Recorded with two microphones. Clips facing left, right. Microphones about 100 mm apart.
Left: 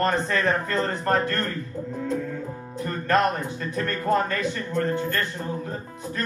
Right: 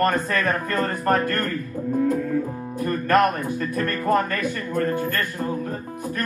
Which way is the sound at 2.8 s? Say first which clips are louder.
Right 3 dB; 50° right (ahead or behind).